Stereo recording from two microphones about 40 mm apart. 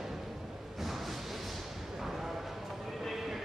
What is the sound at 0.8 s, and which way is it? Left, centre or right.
Music, centre.